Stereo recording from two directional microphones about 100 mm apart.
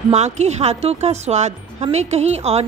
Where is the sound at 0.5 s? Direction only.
90° right.